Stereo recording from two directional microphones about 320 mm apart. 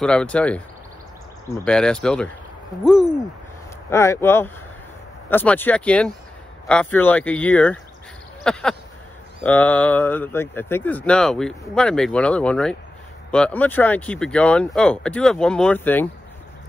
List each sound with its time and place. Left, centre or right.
0.0 s speech: centre